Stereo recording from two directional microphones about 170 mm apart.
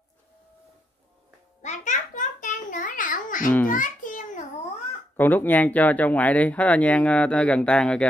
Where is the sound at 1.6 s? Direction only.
45° left (ahead or behind).